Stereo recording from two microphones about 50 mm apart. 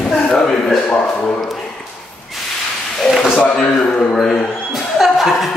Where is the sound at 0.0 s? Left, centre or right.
Centre.